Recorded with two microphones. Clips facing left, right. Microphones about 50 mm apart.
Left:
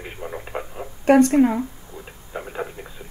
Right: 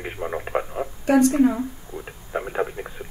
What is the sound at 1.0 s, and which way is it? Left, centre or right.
Speech, left.